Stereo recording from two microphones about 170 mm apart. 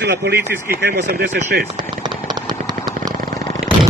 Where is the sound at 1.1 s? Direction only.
70° right (ahead or behind).